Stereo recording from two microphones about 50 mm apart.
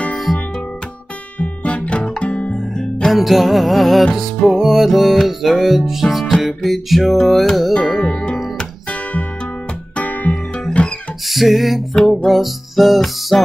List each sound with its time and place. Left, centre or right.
0.1 s music: centre
1.4 s music: left
2.7 s music: centre
3.1 s music: centre
8.0 s music: centre
9.9 s music: left
10.7 s music: left
11.2 s music: centre